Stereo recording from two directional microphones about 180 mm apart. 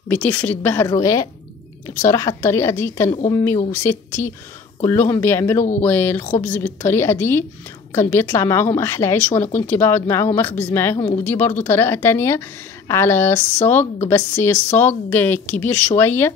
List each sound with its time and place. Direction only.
0.1 s a woman's voice: 10° left (ahead or behind)